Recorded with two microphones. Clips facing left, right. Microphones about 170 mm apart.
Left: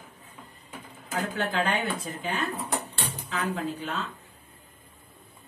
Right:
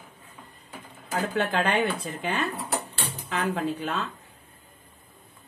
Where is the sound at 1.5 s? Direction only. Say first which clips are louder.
Right 3 dB; 60° right (ahead or behind).